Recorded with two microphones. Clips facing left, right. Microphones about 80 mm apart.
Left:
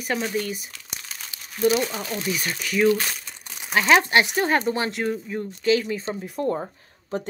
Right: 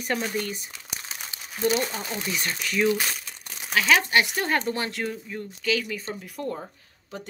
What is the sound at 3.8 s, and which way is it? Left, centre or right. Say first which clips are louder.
Speech: left 4 dB; left.